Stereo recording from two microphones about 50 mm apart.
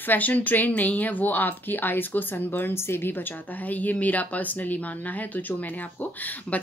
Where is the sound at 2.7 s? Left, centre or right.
Left.